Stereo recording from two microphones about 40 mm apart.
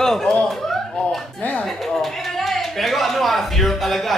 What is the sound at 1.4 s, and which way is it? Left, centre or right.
Speech, left.